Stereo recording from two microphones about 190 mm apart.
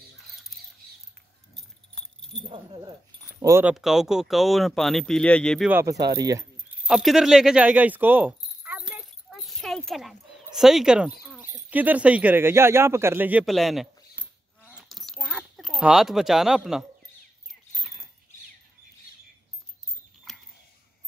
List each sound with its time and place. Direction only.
1.5 s jingle bell: 5° left (ahead or behind)
2.4 s speech: 25° right (ahead or behind)
3.3 s speech: 15° right (ahead or behind)
3.7 s speech: centre (ahead or behind)
5.7 s speech: 15° right (ahead or behind)
6.9 s a sound: centre (ahead or behind)
20.3 s mechanisms: centre (ahead or behind)